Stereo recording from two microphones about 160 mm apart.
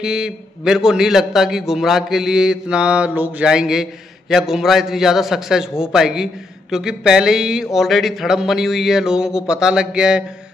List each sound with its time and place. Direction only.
0.0 s a man's voice: 5° right (ahead or behind)